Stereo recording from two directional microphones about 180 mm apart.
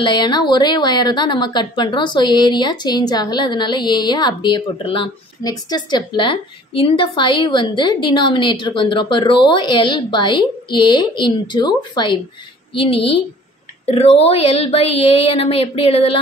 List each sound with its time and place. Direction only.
0.0 s a woman's voice: 25° left (ahead or behind)